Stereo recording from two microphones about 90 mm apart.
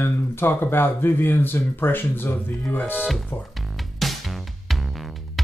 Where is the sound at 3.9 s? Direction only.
Centre (ahead or behind).